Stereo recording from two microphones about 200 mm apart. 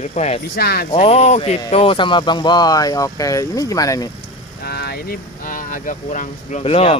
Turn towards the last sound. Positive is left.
turn(degrees=30)  # may be behind; listen again after turning